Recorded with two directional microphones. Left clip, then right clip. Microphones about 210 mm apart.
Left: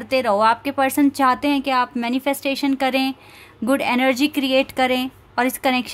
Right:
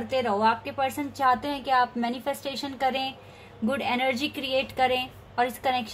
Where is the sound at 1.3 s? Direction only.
90° left.